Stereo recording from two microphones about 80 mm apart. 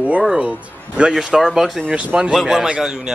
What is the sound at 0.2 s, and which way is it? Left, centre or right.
A man's voice, centre.